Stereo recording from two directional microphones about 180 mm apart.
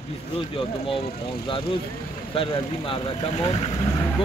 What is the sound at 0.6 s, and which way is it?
Speech, 30° left (ahead or behind).